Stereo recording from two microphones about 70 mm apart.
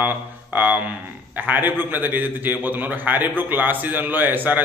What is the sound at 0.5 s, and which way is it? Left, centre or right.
A man's voice, right.